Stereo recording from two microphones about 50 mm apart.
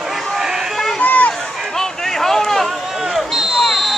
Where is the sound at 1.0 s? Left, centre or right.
Left.